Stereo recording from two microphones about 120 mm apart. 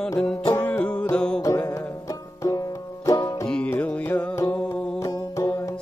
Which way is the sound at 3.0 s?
30° left (ahead or behind).